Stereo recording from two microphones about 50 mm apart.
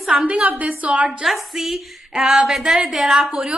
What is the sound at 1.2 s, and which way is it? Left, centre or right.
A woman's voice, centre.